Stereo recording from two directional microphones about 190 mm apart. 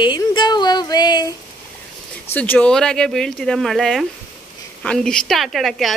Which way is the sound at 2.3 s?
5° left (ahead or behind).